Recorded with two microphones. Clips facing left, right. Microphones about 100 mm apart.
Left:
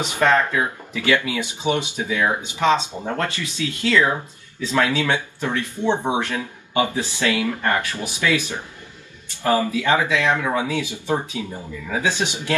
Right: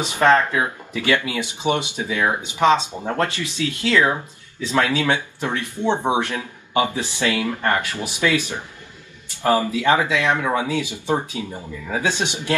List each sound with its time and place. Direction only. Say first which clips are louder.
0.0 s speech: right 2 dB; 20° right (ahead or behind)